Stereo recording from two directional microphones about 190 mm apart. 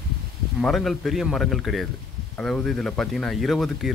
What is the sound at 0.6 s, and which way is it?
Speech, centre (ahead or behind).